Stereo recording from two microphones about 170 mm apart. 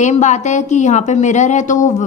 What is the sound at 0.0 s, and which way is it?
A woman's voice, 45° left (ahead or behind).